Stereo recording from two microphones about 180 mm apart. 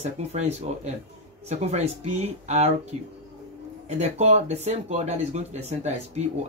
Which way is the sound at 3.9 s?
40° right (ahead or behind).